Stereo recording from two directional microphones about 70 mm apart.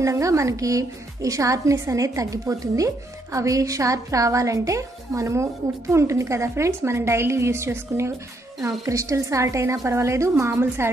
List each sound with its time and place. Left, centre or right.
0.0 s a woman's voice: right
10.5 s a woman's voice: right